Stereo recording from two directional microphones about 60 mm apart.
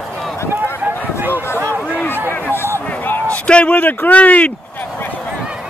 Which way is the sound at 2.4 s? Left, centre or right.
Left.